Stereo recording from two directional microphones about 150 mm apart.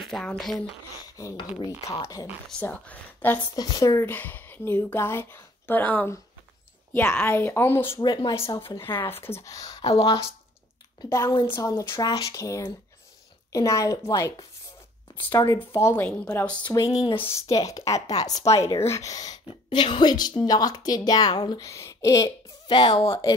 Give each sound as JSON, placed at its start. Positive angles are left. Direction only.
{"t": 0.0, "sound": "speech", "side_deg": 5}
{"t": 1.0, "sound": "speech", "side_deg": 25}
{"t": 2.6, "sound": "speech", "side_deg": 10}
{"t": 3.5, "sound": "speech", "side_deg": 25}
{"t": 8.0, "sound": "speech", "side_deg": 25}
{"t": 9.8, "sound": "speech", "side_deg": 40}
{"t": 11.1, "sound": "speech", "side_deg": 25}
{"t": 15.4, "sound": "speech", "side_deg": 20}
{"t": 16.6, "sound": "speech", "side_deg": 25}